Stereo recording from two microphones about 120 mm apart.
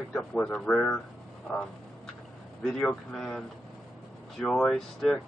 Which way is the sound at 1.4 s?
10° left (ahead or behind).